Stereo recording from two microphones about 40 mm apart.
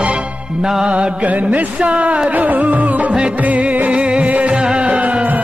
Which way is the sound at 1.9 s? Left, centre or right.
Right.